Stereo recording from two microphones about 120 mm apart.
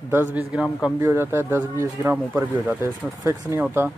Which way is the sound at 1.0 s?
25° right (ahead or behind).